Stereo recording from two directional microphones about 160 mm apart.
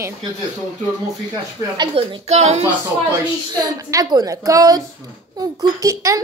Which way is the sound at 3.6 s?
25° right (ahead or behind).